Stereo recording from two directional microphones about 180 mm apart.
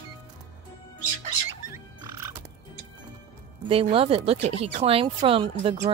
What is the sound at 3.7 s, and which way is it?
Speech, 30° right (ahead or behind).